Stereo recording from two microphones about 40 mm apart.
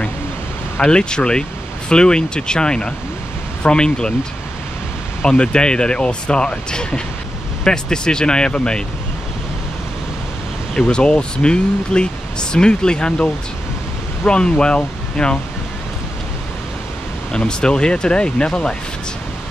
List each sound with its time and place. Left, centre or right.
0.8 s speech: left
5.2 s speech: left
10.7 s speech: left
17.3 s speech: left